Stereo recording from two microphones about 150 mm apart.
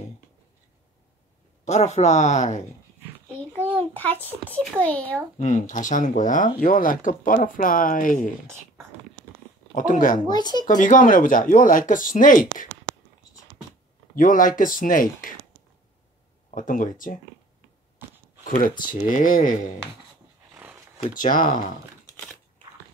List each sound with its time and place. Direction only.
1.6 s speech: 50° left (ahead or behind)
3.6 s a child's voice: 10° left (ahead or behind)
5.4 s speech: 55° left (ahead or behind)
9.8 s speech: 60° left (ahead or behind)
10.3 s speech: 25° left (ahead or behind)
10.8 s speech: 60° left (ahead or behind)
14.1 s speech: 65° left (ahead or behind)
16.4 s speech: 60° left (ahead or behind)
18.4 s a sound: 65° left (ahead or behind)
19.0 s speech: 65° left (ahead or behind)
20.5 s a sound: 15° right (ahead or behind)
21.1 s speech: 65° left (ahead or behind)
22.0 s a sound: 15° left (ahead or behind)